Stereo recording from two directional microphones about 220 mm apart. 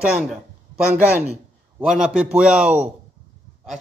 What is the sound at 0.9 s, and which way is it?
Speech, 10° right (ahead or behind).